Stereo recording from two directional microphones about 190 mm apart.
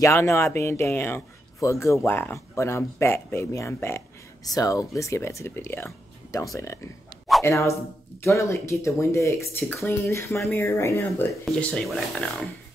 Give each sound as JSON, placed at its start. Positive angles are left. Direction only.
{"t": 0.0, "sound": "speech", "side_deg": 15}